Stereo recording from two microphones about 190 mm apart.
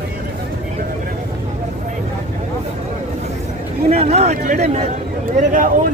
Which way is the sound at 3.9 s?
35° right (ahead or behind).